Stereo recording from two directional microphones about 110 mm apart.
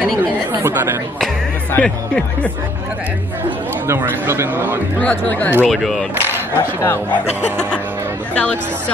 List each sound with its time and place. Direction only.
0.5 s a man's voice: 20° right (ahead or behind)
1.7 s speech: 10° left (ahead or behind)
3.8 s a man's voice: 20° right (ahead or behind)
5.0 s speech: 15° left (ahead or behind)
5.7 s speech: 5° left (ahead or behind)
6.8 s speech: 20° left (ahead or behind)
8.4 s speech: 10° left (ahead or behind)